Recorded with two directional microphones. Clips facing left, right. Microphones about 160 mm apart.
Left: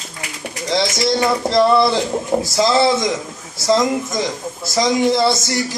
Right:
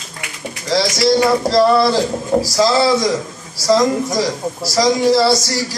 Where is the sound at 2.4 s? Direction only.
25° left (ahead or behind).